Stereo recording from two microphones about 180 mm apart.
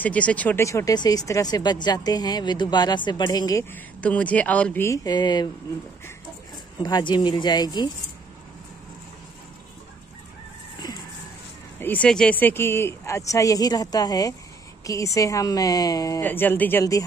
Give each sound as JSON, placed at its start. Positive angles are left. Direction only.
{"t": 0.0, "sound": "speech", "side_deg": 5}
{"t": 4.0, "sound": "speech", "side_deg": 5}
{"t": 6.8, "sound": "speech", "side_deg": 25}
{"t": 11.8, "sound": "speech", "side_deg": 10}